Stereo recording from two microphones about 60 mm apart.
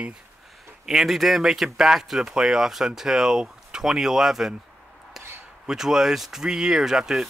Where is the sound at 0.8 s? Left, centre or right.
Centre.